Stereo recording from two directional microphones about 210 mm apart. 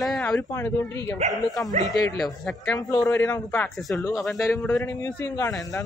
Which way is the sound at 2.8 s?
15° left (ahead or behind).